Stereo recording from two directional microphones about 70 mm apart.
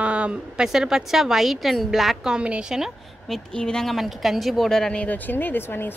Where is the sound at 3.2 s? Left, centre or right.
Centre.